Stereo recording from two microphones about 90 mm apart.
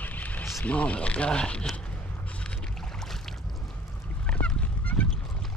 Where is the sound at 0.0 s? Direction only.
15° left (ahead or behind).